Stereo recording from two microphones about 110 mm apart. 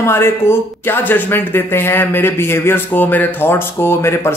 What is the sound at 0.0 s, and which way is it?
Speech, 20° left (ahead or behind).